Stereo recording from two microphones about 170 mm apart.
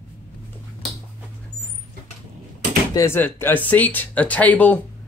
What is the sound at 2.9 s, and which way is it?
A man's voice, 15° left (ahead or behind).